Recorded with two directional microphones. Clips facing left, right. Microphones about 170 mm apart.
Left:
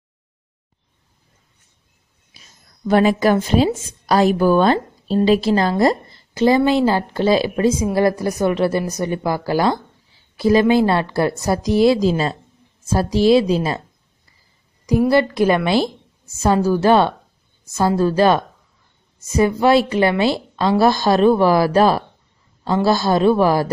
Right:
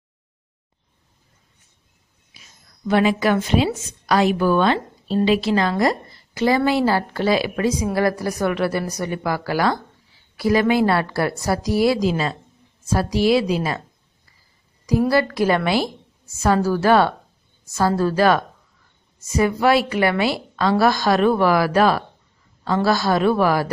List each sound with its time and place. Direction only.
2.9 s a woman's voice: 40° left (ahead or behind)
14.9 s a woman's voice: 20° left (ahead or behind)